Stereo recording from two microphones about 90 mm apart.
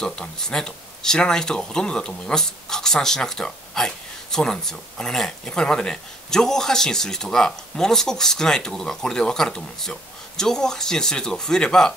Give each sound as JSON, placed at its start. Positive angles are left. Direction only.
{"t": 0.0, "sound": "speech", "side_deg": 5}